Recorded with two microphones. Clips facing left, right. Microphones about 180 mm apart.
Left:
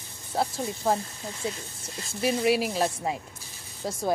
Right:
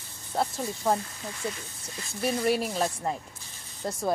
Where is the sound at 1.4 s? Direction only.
25° left (ahead or behind).